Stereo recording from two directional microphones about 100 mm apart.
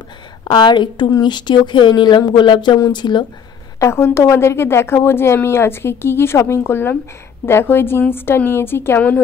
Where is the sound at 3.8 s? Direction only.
25° left (ahead or behind).